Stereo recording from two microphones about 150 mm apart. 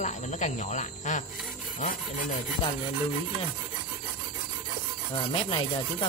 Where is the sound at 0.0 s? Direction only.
55° left (ahead or behind).